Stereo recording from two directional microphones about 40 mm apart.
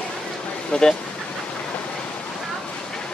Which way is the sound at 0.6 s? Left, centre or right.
Centre.